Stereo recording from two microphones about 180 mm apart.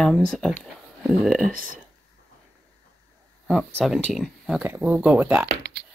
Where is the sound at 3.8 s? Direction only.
Centre (ahead or behind).